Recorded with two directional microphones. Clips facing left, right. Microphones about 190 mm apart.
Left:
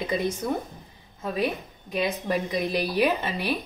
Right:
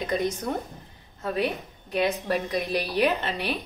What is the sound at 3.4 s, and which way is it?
Speech, 15° right (ahead or behind).